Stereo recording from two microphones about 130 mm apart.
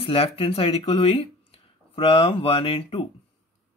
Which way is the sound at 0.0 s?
45° left (ahead or behind).